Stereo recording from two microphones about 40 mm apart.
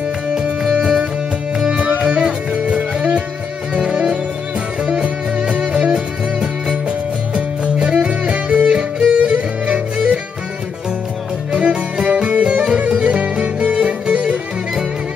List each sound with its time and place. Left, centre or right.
0.3 s music: right
7.3 s music: right
11.5 s music: right